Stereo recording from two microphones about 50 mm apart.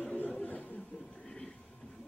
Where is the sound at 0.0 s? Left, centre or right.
Left.